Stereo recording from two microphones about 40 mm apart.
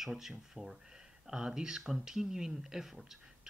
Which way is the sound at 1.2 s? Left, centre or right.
Centre.